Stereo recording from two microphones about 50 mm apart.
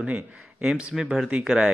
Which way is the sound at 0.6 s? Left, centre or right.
Centre.